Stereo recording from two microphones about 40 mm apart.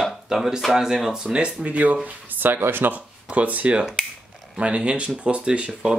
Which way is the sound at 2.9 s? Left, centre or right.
Right.